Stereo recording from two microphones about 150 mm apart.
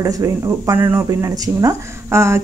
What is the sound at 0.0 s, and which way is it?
A woman's voice, 20° right (ahead or behind).